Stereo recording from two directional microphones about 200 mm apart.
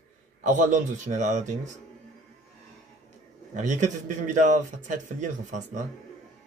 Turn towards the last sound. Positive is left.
turn(degrees=-40)  # may be behind; listen again after turning